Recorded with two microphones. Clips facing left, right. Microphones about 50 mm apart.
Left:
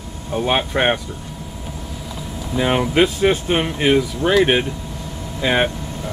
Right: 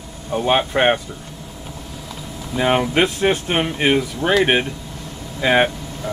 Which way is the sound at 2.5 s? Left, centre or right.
Centre.